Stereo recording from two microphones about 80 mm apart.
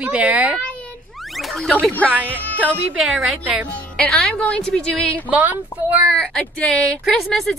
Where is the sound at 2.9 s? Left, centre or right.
Centre.